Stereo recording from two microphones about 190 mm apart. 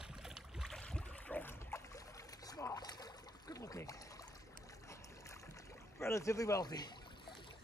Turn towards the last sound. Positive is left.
turn(degrees=25)  # may be behind; listen again after turning